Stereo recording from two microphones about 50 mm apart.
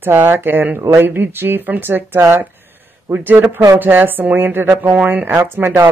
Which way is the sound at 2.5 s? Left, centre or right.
Right.